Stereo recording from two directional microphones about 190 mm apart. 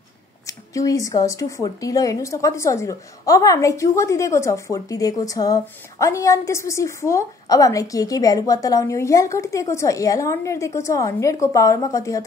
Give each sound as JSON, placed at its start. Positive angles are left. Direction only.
{"t": 0.5, "sound": "a woman's voice", "side_deg": 15}